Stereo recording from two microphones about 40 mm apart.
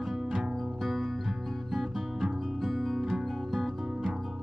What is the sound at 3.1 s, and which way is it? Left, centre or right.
Music, centre.